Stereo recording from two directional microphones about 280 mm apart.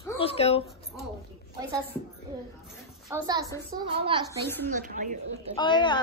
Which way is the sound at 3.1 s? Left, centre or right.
Centre.